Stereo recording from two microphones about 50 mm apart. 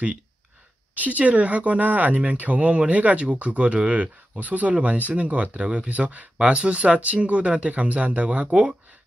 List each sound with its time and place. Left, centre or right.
0.9 s speech: right